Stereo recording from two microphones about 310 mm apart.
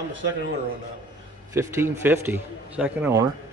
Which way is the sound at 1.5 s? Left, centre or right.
Centre.